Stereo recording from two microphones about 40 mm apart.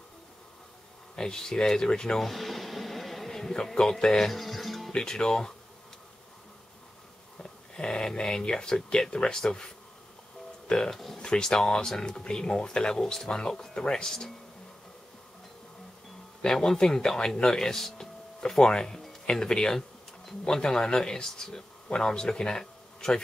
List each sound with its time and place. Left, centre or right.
1.1 s speech: centre
2.1 s a sound: centre
4.0 s speech: centre
4.3 s music: centre
4.9 s speech: centre
7.7 s speech: centre
10.7 s speech: centre
16.4 s speech: centre